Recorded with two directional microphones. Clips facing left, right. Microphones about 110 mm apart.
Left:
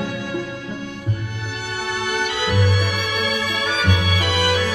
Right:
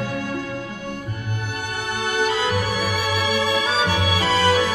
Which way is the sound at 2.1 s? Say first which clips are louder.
Right 4 dB; 40° right (ahead or behind).